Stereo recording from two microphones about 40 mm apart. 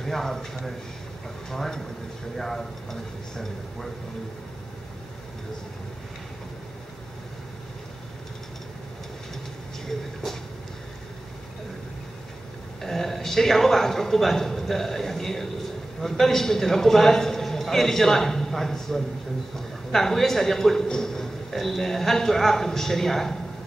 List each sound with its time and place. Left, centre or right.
0.0 s a man's voice: centre
1.5 s a man's voice: centre
12.8 s a man's voice: centre